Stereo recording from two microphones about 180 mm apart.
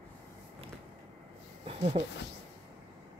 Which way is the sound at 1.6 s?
35° right (ahead or behind).